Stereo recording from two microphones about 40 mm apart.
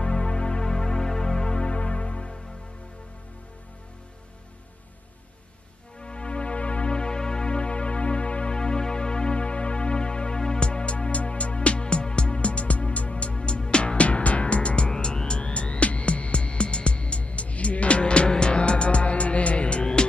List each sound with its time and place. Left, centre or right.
0.0 s music: left
5.9 s music: left
14.9 s music: centre